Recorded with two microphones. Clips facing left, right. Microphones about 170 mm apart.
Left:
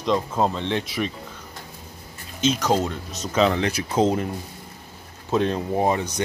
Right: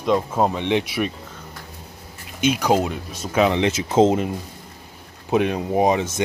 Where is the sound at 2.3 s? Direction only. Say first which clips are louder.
Right 2 dB; 10° right (ahead or behind).